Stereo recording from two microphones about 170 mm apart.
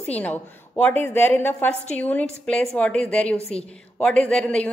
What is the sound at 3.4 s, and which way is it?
Speech, 35° left (ahead or behind).